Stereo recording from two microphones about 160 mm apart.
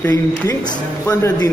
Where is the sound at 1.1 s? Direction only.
20° left (ahead or behind).